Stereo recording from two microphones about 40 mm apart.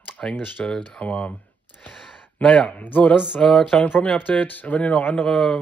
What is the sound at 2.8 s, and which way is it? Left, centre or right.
Speech, left.